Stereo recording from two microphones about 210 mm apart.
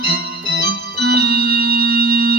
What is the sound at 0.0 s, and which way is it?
Organ, 50° right (ahead or behind).